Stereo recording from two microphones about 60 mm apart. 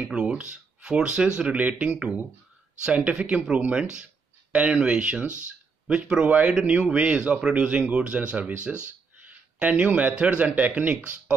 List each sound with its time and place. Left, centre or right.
0.1 s speech: centre
9.6 s speech: right